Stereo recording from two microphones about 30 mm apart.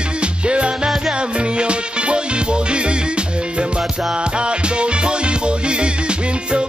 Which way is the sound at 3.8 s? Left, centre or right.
Centre.